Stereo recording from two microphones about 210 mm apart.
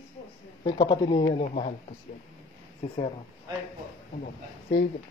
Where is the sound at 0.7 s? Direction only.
25° left (ahead or behind).